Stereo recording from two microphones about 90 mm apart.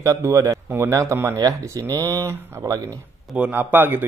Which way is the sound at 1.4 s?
40° right (ahead or behind).